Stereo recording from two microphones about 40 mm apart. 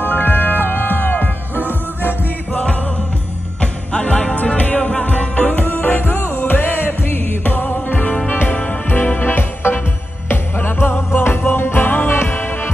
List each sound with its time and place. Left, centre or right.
0.0 s music: left
3.9 s music: left
4.5 s music: left
4.7 s music: left
5.8 s music: left
6.5 s music: left
7.7 s music: left
9.3 s music: left